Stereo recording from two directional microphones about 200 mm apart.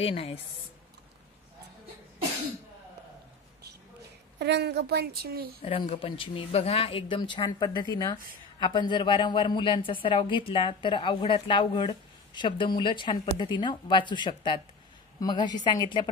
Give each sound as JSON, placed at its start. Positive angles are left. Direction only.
{"t": 0.0, "sound": "speech", "side_deg": 30}
{"t": 4.4, "sound": "a woman's voice", "side_deg": -55}
{"t": 5.6, "sound": "a woman's voice", "side_deg": 30}